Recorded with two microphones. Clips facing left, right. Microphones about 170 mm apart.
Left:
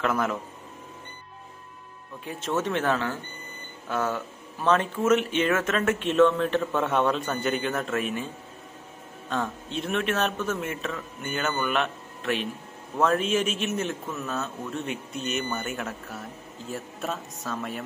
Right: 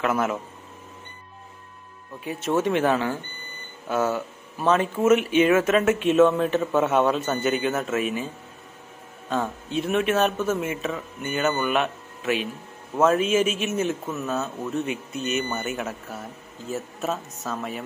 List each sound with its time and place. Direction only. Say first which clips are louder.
0.0 s a man's voice: right 2 dB; 5° right (ahead or behind)
2.6 s speech: right 4 dB; 10° right (ahead or behind)
9.3 s a man's voice: right 4 dB; 5° right (ahead or behind)